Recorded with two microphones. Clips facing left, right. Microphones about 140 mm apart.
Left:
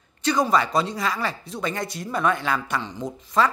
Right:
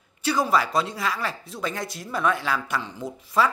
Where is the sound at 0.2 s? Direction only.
5° right (ahead or behind).